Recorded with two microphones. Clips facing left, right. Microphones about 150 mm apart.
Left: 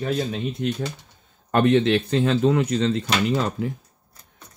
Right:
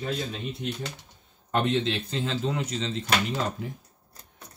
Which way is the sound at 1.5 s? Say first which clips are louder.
Left 8 dB; 65° left (ahead or behind).